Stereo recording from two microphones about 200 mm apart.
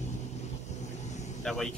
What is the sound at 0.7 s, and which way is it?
Vehicle, 35° left (ahead or behind).